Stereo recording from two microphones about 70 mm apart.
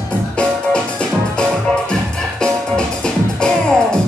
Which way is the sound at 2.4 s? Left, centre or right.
Centre.